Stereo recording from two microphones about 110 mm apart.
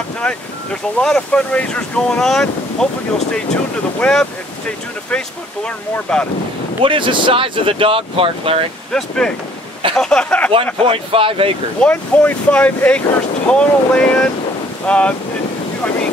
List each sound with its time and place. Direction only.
0.2 s speech: 10° left (ahead or behind)
4.0 s speech: 10° left (ahead or behind)
6.8 s speech: 50° right (ahead or behind)
8.9 s speech: 5° left (ahead or behind)
10.5 s speech: 55° right (ahead or behind)
11.8 s speech: 15° left (ahead or behind)